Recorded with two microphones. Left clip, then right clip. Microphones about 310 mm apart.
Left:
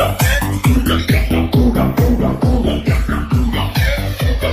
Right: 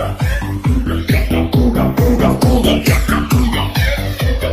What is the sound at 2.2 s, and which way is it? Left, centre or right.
Music, right.